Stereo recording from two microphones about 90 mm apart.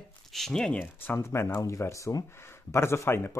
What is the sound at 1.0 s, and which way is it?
Speech, 30° left (ahead or behind).